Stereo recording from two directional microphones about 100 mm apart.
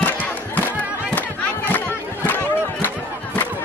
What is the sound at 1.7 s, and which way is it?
Chatter, 20° left (ahead or behind).